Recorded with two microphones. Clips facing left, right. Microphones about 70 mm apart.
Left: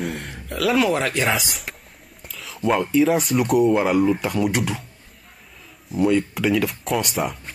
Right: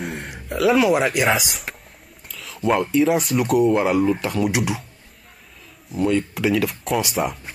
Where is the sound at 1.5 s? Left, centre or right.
Centre.